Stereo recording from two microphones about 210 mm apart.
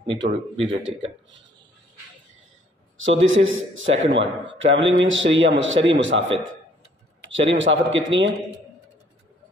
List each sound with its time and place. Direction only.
0.2 s a man's voice: 60° right (ahead or behind)
3.0 s a man's voice: 65° right (ahead or behind)